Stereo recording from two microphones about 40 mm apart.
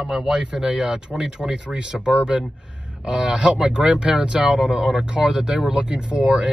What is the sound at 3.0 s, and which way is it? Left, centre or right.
Speech, centre.